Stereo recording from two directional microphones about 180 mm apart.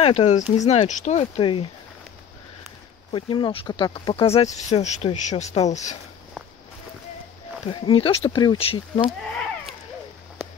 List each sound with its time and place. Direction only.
0.0 s speech: 35° left (ahead or behind)
1.4 s speech: 30° left (ahead or behind)
3.1 s speech: 30° left (ahead or behind)
7.6 s speech: 30° left (ahead or behind)